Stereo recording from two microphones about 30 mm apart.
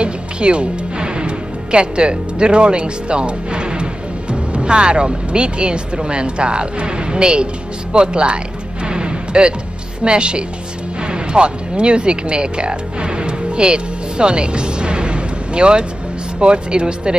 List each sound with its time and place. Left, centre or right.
0.0 s speech: right
8.8 s music: right
10.0 s speech: right